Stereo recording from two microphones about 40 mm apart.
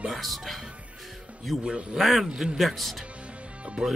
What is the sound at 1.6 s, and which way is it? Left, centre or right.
Speech, right.